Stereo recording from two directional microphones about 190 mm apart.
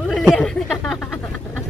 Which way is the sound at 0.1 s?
Centre (ahead or behind).